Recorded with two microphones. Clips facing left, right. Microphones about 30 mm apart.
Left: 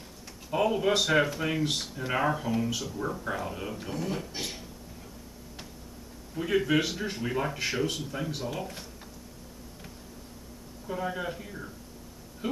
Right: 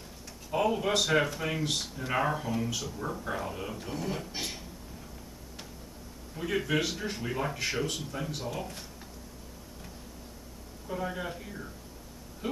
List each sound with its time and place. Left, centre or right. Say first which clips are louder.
0.5 s speech: left 2 dB; centre
6.3 s speech: left 4 dB; centre
10.9 s speech: left 2 dB; centre